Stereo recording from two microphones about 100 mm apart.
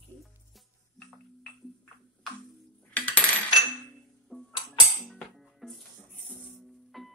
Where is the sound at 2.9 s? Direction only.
15° left (ahead or behind).